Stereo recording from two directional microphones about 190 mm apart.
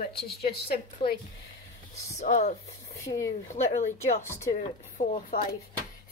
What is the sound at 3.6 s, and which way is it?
Speech, 40° left (ahead or behind).